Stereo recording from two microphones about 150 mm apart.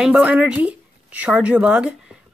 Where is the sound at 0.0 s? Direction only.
10° right (ahead or behind).